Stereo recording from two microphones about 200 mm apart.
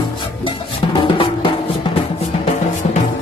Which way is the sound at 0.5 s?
25° left (ahead or behind).